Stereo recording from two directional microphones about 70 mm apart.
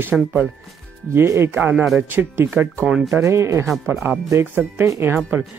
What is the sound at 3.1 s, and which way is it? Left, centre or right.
Speech, right.